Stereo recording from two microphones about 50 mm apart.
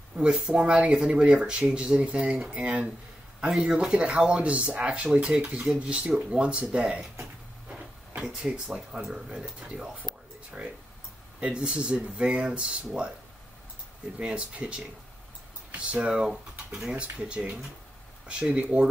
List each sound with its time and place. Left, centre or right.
0.2 s speech: centre
8.2 s speech: centre
14.2 s speech: right
18.6 s speech: right